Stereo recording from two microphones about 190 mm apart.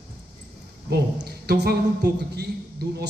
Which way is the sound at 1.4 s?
60° right (ahead or behind).